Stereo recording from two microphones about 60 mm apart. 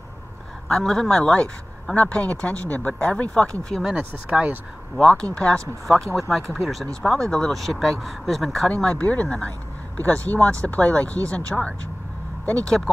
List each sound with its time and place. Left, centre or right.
0.7 s speech: centre; by 3.6 s left
3.8 s speech: centre
4.9 s speech: centre
6.1 s speech: centre
8.6 s speech: centre
12.6 s speech: centre